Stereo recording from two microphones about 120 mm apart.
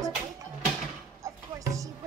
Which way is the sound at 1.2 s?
25° right (ahead or behind).